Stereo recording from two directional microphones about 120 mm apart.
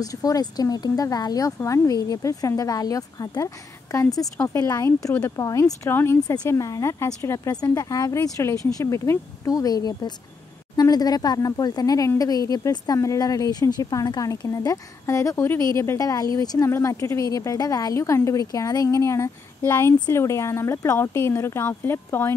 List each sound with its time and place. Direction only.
0.0 s speech: 30° left (ahead or behind)